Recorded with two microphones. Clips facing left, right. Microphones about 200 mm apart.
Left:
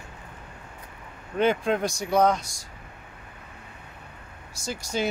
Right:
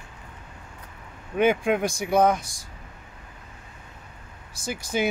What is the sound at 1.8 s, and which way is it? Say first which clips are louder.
Speech: right 2 dB; 55° right (ahead or behind).